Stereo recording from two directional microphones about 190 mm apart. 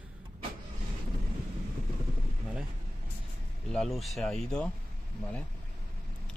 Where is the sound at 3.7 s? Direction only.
Centre (ahead or behind).